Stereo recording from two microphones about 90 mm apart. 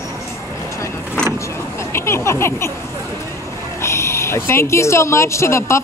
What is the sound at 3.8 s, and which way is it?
Speech, 30° left (ahead or behind).